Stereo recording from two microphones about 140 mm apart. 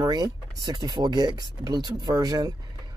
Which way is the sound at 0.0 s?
30° right (ahead or behind).